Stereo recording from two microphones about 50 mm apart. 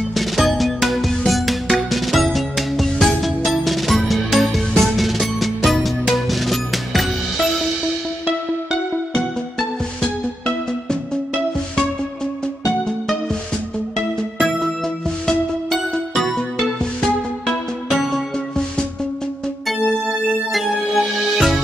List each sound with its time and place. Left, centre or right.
0.1 s music: centre
13.9 s music: centre
20.5 s music: centre